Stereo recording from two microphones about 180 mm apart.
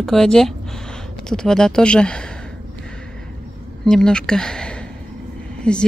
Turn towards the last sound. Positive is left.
turn(degrees=5)  # may be behind; listen again after turning